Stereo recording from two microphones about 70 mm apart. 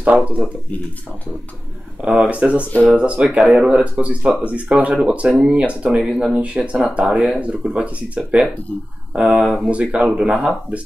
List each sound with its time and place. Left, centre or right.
0.0 s speech: right
2.0 s speech: centre